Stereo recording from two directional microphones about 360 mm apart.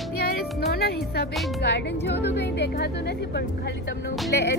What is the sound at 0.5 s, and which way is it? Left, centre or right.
Music, left.